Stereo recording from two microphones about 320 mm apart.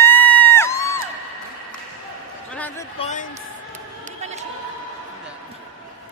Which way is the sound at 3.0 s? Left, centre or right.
Left.